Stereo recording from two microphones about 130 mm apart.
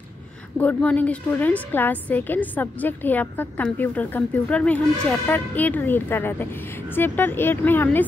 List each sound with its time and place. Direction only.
0.6 s a woman's voice: 10° left (ahead or behind)